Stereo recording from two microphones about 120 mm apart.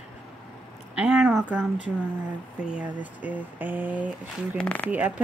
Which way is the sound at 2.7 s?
10° right (ahead or behind).